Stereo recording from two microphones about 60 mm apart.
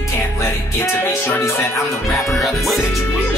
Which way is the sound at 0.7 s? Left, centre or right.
Left.